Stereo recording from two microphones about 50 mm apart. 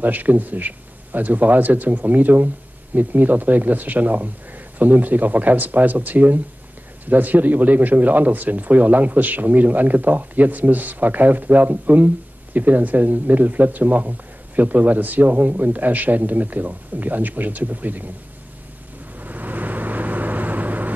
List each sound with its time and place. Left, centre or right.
0.0 s speech: right
19.1 s vehicle: right